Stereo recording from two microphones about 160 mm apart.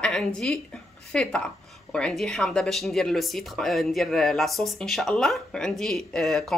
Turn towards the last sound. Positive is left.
turn(degrees=0)  # may be behind; listen again after turning